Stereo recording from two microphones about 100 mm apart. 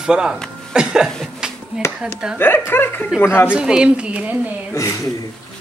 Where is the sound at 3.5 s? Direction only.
10° right (ahead or behind).